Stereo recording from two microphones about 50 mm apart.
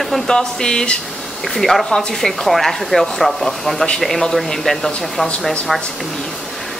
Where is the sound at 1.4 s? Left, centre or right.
Centre.